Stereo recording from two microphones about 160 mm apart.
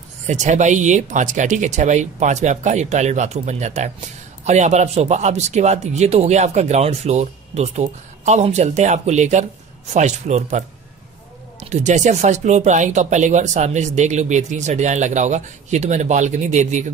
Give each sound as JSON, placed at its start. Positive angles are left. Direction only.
{"t": 0.3, "sound": "speech", "side_deg": -50}
{"t": 11.6, "sound": "speech", "side_deg": -45}